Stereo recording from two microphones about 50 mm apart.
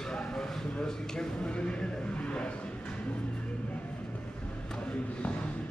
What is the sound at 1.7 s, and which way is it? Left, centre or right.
Vehicle, left.